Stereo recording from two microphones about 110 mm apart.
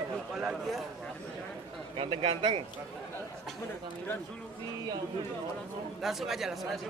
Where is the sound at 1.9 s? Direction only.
55° right (ahead or behind).